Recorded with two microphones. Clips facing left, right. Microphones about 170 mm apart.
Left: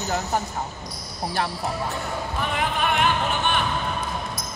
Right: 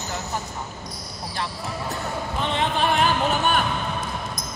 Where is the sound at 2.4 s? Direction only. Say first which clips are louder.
Right 2 dB; 25° right (ahead or behind).